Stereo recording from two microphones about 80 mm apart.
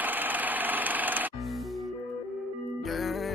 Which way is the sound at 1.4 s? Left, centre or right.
Centre.